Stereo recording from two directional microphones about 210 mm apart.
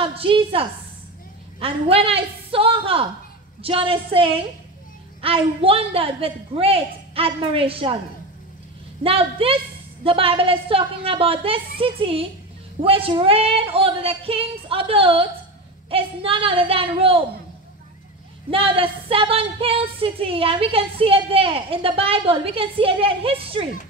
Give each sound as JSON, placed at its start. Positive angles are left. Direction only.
{"t": 0.0, "sound": "a woman's voice", "side_deg": -25}
{"t": 9.0, "sound": "speech", "side_deg": -25}
{"t": 18.5, "sound": "speech", "side_deg": -25}